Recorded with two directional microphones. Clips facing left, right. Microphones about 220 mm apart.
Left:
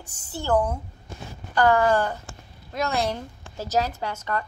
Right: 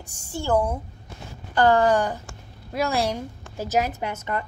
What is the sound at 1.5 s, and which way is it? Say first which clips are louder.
Speech: right 1 dB; 25° right (ahead or behind).